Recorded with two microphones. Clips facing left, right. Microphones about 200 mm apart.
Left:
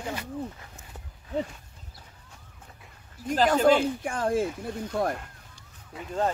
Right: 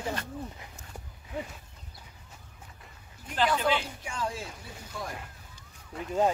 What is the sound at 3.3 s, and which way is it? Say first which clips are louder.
Speech: left 7 dB; 45° left (ahead or behind).